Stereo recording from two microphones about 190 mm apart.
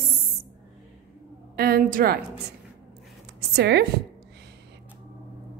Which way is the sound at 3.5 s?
65° right (ahead or behind).